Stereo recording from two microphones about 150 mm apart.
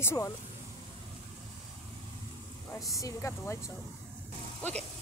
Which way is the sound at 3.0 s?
20° left (ahead or behind).